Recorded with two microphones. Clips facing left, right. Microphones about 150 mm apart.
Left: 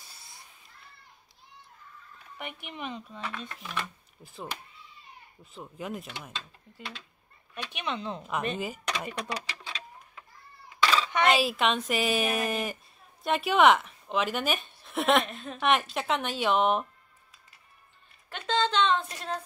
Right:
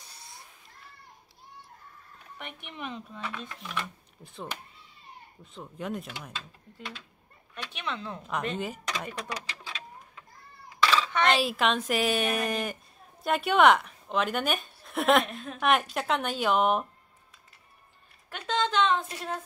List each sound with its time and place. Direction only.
2.3 s a woman's voice: 5° left (ahead or behind)
7.7 s speech: 20° left (ahead or behind)
8.2 s speech: 5° left (ahead or behind)
11.1 s a woman's voice: 10° left (ahead or behind)
18.3 s a woman's voice: 10° right (ahead or behind)